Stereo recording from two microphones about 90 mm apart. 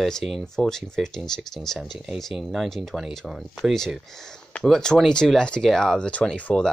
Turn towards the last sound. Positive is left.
turn(degrees=10)  # may be behind; listen again after turning